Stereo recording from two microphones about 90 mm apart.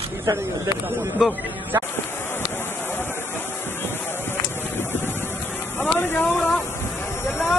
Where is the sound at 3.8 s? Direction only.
25° left (ahead or behind).